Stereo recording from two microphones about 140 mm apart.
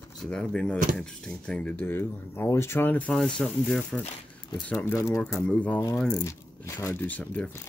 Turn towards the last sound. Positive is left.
turn(degrees=10)  # may be behind; listen again after turning